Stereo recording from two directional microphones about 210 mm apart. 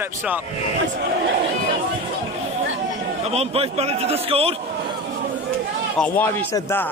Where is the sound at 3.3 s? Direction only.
30° right (ahead or behind).